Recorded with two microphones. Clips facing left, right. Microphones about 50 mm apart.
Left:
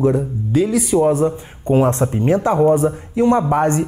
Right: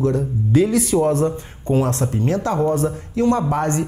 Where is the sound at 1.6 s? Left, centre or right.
Left.